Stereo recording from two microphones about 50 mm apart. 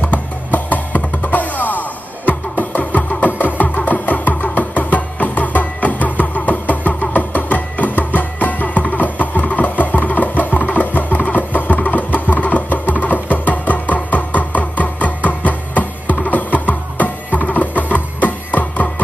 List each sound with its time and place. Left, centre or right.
0.0 s music: left
9.0 s a sound: left
13.5 s music: left